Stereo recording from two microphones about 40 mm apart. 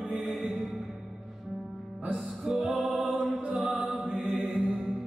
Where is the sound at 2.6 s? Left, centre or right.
Centre.